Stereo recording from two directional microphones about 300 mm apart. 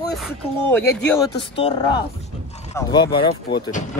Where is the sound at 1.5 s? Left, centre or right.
Centre.